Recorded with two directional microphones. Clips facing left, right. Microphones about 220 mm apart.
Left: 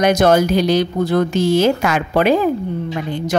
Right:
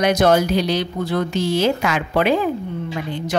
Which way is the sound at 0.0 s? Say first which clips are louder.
Left 3 dB; 45° left (ahead or behind).